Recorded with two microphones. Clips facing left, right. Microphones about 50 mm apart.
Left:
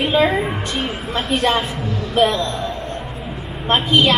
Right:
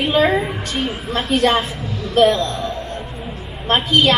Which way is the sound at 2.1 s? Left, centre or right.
Centre.